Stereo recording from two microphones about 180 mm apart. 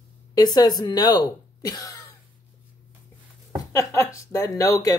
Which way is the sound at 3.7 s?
15° left (ahead or behind).